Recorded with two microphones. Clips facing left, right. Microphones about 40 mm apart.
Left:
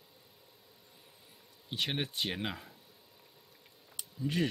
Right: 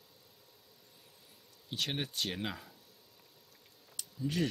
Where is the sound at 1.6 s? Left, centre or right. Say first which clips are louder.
Left 2 dB; centre.